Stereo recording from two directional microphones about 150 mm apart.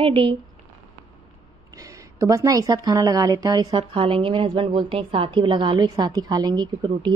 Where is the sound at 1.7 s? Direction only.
20° right (ahead or behind).